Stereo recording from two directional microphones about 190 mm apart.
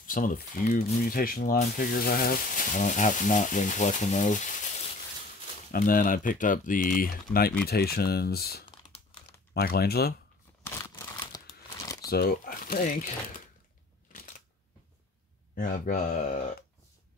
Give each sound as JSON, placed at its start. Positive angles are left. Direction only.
{"t": 0.0, "sound": "speech", "side_deg": 45}
{"t": 5.7, "sound": "speech", "side_deg": 45}
{"t": 8.6, "sound": "crumpling", "side_deg": 25}
{"t": 9.5, "sound": "speech", "side_deg": 55}
{"t": 10.6, "sound": "crumpling", "side_deg": 20}
{"t": 12.1, "sound": "speech", "side_deg": 55}
{"t": 15.5, "sound": "speech", "side_deg": 45}